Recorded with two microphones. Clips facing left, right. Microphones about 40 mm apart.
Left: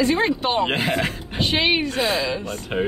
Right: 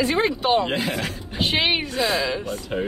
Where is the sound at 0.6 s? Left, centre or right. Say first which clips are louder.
Left 3 dB; left.